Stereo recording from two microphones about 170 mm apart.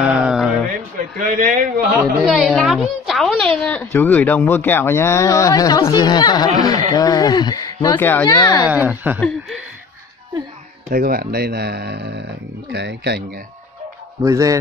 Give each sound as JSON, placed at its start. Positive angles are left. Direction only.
{"t": 0.0, "sound": "a sound", "side_deg": -5}
{"t": 1.2, "sound": "a man's voice", "side_deg": -50}
{"t": 2.2, "sound": "a woman's voice", "side_deg": 0}
{"t": 8.3, "sound": "speech", "side_deg": 25}
{"t": 8.6, "sound": "speech", "side_deg": -10}
{"t": 10.9, "sound": "speech", "side_deg": -60}
{"t": 14.2, "sound": "a man's voice", "side_deg": -20}